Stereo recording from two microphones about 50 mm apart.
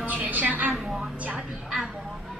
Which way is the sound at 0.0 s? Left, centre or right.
Right.